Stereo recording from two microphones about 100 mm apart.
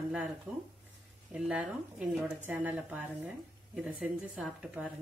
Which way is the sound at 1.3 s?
5° right (ahead or behind).